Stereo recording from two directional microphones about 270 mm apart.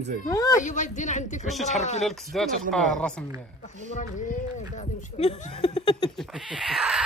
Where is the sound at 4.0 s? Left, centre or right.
Left.